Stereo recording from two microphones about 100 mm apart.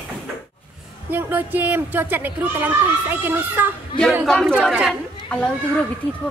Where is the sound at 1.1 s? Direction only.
20° right (ahead or behind).